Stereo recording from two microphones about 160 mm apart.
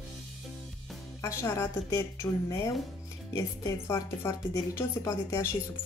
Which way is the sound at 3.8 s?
20° left (ahead or behind).